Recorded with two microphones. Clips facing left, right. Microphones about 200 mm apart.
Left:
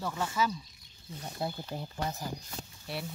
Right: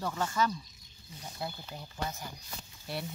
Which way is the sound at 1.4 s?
25° left (ahead or behind).